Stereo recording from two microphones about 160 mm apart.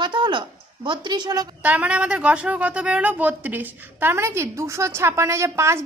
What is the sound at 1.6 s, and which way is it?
Speech, 10° right (ahead or behind).